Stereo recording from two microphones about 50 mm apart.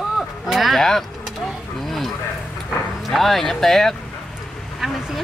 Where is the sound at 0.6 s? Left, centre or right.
Centre.